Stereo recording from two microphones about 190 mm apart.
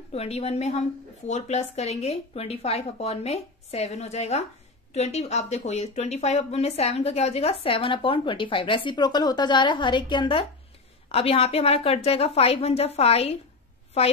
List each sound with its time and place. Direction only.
0.1 s speech: 35° left (ahead or behind)